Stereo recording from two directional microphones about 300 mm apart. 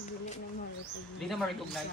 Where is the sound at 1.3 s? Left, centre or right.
Centre.